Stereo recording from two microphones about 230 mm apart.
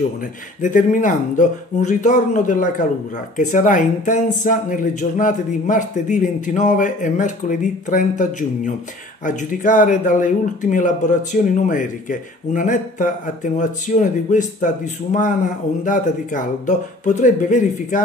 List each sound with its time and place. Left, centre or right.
0.6 s speech: left